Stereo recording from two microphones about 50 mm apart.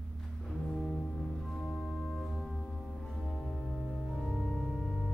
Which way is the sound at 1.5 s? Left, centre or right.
Centre.